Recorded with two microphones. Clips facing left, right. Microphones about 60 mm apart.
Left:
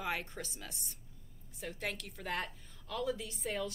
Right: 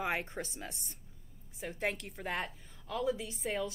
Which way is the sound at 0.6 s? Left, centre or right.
Right.